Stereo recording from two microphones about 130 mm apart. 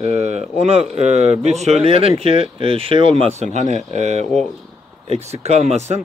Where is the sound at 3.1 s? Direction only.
55° right (ahead or behind).